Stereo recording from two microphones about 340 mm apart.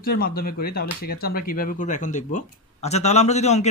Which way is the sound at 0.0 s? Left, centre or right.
Left.